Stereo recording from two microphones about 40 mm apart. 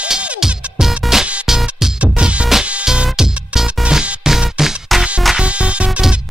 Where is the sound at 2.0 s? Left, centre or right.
Right.